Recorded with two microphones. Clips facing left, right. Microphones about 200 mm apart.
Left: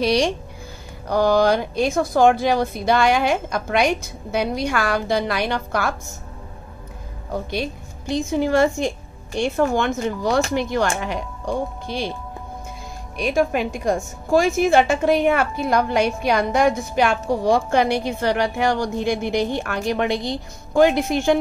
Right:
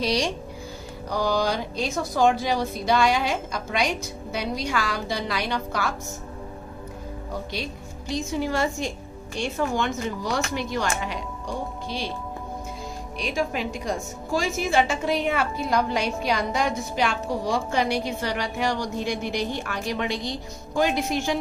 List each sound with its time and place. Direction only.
0.0 s a woman's voice: 60° left (ahead or behind)
7.5 s a woman's voice: 55° left (ahead or behind)
13.2 s a woman's voice: 55° left (ahead or behind)